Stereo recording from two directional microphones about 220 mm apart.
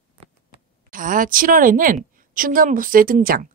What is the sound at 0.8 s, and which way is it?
A woman's voice, 40° right (ahead or behind).